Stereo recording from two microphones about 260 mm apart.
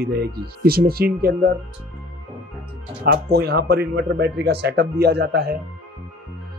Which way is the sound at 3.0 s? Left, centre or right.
Right.